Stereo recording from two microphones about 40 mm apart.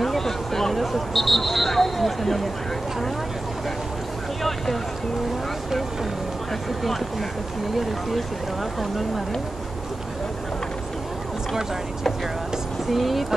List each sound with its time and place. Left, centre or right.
0.0 s a sound: centre
0.9 s speech: centre
4.4 s speech: centre
7.7 s speech: centre
12.9 s speech: centre